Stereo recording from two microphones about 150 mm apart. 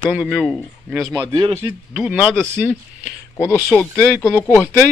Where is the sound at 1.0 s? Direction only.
25° right (ahead or behind).